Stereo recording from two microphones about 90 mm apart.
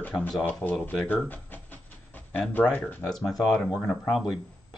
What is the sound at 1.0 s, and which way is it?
Pant, 20° left (ahead or behind).